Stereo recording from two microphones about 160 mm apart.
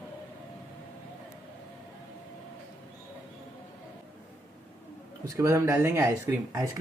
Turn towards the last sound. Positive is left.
turn(degrees=-20)  # may be behind; listen again after turning